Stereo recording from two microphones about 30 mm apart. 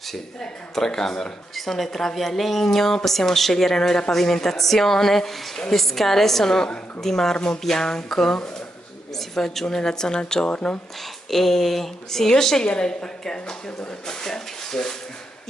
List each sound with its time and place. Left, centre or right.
0.7 s a woman's voice: centre
1.5 s a woman's voice: centre
9.8 s a woman's voice: left
11.2 s a woman's voice: centre